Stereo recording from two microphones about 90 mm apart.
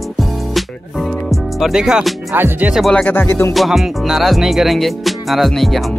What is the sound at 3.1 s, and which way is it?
Music, 25° left (ahead or behind).